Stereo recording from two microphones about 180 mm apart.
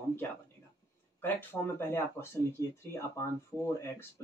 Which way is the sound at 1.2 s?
10° left (ahead or behind).